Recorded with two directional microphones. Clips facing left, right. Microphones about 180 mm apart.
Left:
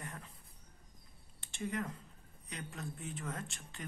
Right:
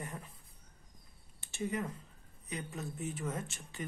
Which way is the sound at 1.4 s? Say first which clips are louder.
Right 2 dB; 5° right (ahead or behind).